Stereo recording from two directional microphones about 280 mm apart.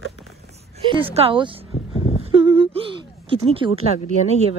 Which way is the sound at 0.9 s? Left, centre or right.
Centre.